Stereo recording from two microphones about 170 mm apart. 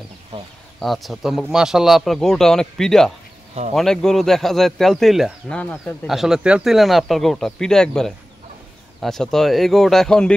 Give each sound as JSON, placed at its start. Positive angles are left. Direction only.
{"t": 0.3, "sound": "speech", "side_deg": -30}
{"t": 0.7, "sound": "a man's voice", "side_deg": 0}
{"t": 6.0, "sound": "a man's voice", "side_deg": 0}